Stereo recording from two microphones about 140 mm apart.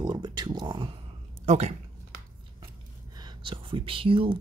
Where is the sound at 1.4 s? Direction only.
55° right (ahead or behind).